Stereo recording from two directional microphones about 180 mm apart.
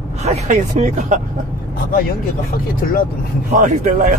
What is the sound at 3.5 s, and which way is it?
Speech, 45° right (ahead or behind).